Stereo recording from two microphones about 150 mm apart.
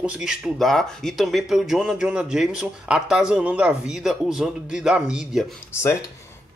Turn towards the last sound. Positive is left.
turn(degrees=20)  # may be behind; listen again after turning